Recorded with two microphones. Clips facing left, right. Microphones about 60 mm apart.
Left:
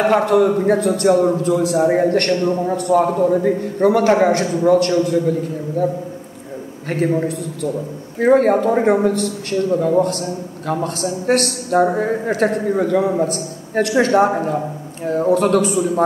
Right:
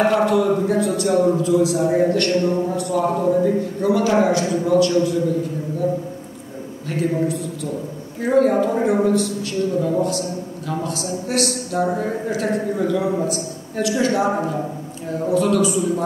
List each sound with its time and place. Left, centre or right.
0.1 s a man's voice: left
2.3 s a man's voice: left
2.7 s a man's voice: left
6.9 s a man's voice: left